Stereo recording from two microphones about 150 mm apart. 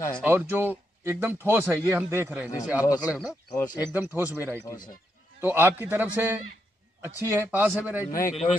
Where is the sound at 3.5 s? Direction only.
25° left (ahead or behind).